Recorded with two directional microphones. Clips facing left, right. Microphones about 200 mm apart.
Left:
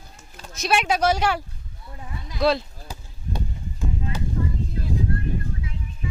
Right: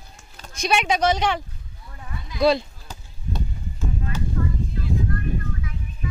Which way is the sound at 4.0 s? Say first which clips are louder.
Right 1 dB; 20° left (ahead or behind).